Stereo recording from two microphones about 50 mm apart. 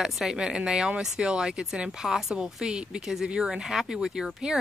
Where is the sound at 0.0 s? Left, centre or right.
Centre.